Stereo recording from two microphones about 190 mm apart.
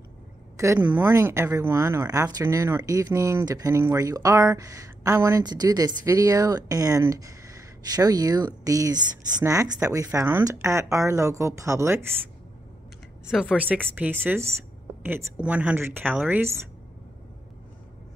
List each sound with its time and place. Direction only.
0.6 s speech: 10° right (ahead or behind)
13.3 s speech: 5° right (ahead or behind)